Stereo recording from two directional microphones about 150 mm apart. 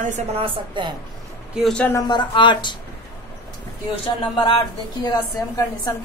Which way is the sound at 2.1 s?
30° left (ahead or behind).